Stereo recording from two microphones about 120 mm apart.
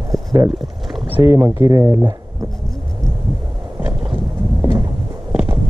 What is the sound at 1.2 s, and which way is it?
Speech, 20° right (ahead or behind).